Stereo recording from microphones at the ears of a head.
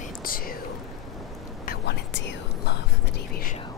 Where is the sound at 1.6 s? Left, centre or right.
Left.